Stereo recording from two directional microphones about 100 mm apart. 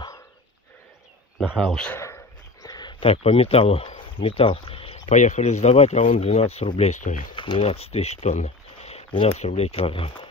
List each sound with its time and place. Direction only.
1.6 s a man's voice: 10° left (ahead or behind)
2.0 s a sound: 30° left (ahead or behind)
3.0 s speech: 75° left (ahead or behind)
7.3 s speech: 60° left (ahead or behind)